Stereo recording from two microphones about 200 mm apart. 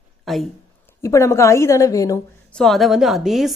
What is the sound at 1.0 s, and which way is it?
Speech, 15° left (ahead or behind).